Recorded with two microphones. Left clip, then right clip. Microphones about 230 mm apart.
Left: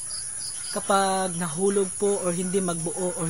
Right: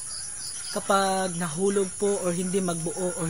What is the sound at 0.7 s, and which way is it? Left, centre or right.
Speech, centre.